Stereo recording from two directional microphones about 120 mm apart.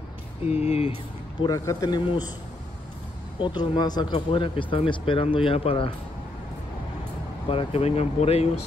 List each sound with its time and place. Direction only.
0.5 s speech: 60° left (ahead or behind)
1.5 s speech: 30° left (ahead or behind)
3.3 s speech: 40° left (ahead or behind)
7.4 s speech: 50° left (ahead or behind)